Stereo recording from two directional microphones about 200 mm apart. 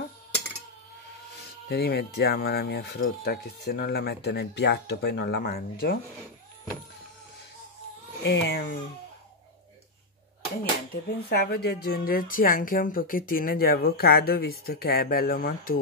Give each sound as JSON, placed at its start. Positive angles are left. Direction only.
{"t": 1.7, "sound": "speech", "side_deg": 50}
{"t": 8.2, "sound": "speech", "side_deg": 60}
{"t": 10.6, "sound": "speech", "side_deg": 50}